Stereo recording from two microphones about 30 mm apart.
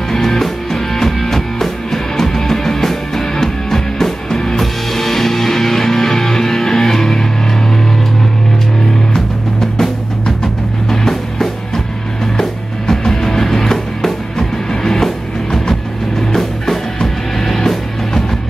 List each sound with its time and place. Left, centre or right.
0.1 s music: centre
9.1 s music: centre
16.3 s music: centre